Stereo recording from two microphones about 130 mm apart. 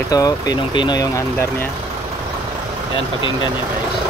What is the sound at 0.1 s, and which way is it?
Speech, 30° left (ahead or behind).